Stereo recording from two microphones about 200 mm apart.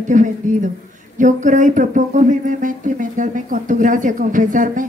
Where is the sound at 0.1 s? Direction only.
40° right (ahead or behind).